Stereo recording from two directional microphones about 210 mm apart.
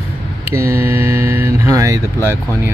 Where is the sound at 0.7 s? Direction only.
10° right (ahead or behind).